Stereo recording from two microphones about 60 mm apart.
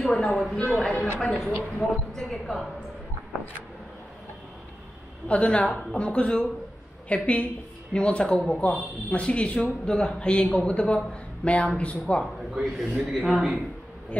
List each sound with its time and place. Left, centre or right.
0.1 s speech: centre
5.3 s speech: left
12.6 s speech: centre